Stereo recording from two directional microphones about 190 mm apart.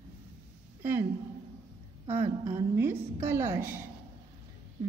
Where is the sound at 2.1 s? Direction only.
10° right (ahead or behind).